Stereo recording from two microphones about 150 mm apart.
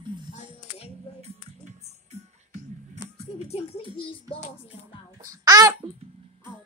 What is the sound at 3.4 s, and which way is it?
Speech, 45° left (ahead or behind).